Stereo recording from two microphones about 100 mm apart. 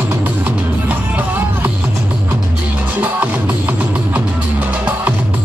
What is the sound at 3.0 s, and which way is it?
Music, 15° right (ahead or behind).